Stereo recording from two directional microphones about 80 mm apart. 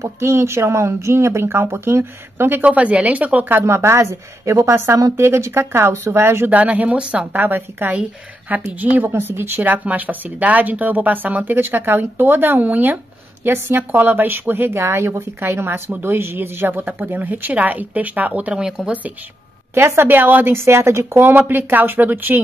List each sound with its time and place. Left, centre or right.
0.0 s speech: right
2.6 s a woman's voice: centre
3.6 s speech: right
6.5 s speech: centre
7.3 s a woman's voice: right
19.7 s a woman's voice: right